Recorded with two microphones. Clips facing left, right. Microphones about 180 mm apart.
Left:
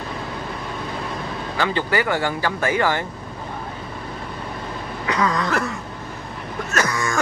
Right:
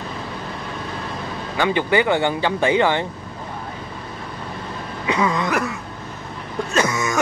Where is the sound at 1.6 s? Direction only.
15° right (ahead or behind).